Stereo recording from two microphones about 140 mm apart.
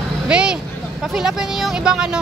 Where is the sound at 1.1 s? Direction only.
5° right (ahead or behind).